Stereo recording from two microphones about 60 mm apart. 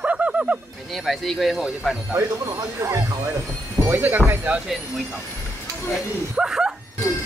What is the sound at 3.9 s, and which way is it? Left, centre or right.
Speech, right.